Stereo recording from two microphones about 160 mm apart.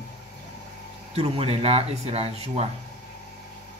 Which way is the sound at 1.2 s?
35° right (ahead or behind).